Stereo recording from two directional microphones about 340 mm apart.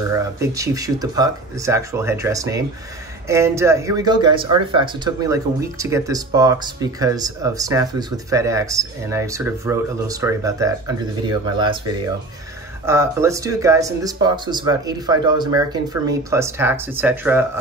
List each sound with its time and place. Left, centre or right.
0.1 s speech: centre
12.8 s speech: centre